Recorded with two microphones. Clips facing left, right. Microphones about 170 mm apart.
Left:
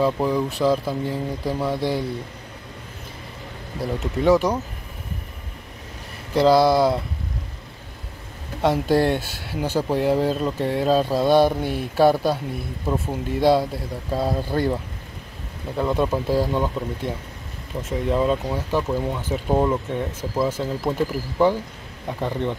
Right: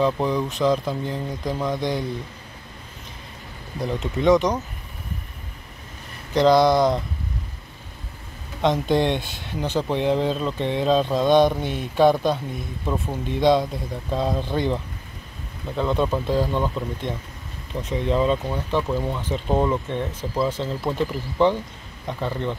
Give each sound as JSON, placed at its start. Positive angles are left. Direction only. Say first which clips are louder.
{"t": 0.0, "sound": "speech", "louder": "left 1 dB", "side_deg": 5}
{"t": 3.8, "sound": "speech", "louder": "even", "side_deg": 5}
{"t": 6.3, "sound": "speech", "louder": "even", "side_deg": 5}
{"t": 8.6, "sound": "speech", "louder": "left 1 dB", "side_deg": 5}
{"t": 15.8, "sound": "speech", "louder": "left 1 dB", "side_deg": 5}